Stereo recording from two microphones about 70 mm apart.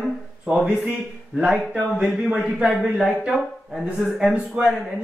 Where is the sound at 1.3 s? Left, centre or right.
Centre.